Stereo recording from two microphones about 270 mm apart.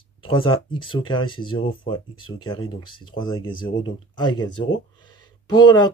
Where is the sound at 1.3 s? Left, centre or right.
Centre.